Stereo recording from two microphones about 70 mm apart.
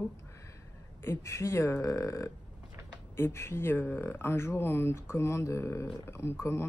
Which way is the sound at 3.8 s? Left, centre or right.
Left.